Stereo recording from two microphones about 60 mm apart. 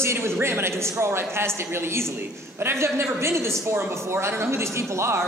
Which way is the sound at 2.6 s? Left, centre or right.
Right.